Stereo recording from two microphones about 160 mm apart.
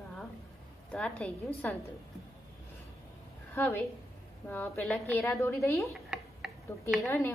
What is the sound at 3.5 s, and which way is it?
A woman's voice, 15° left (ahead or behind).